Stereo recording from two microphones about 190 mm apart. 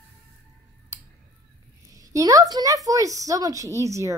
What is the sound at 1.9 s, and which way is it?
A woman's voice, 15° right (ahead or behind).